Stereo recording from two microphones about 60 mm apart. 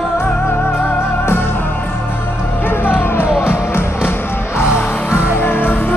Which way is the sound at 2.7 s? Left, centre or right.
Left.